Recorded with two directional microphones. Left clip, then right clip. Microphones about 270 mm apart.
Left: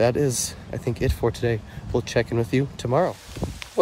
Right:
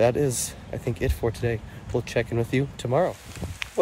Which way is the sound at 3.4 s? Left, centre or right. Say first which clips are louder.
Left 9 dB; left.